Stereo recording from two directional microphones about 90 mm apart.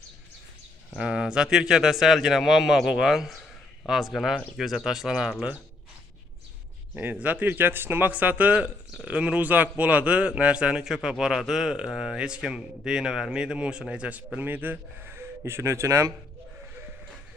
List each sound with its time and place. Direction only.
0.9 s speech: 10° right (ahead or behind)
7.0 s a man's voice: 20° right (ahead or behind)